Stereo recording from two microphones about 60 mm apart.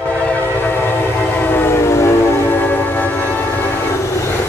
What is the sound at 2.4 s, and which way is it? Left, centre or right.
Train, left.